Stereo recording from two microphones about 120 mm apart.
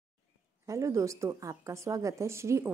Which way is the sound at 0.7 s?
25° right (ahead or behind).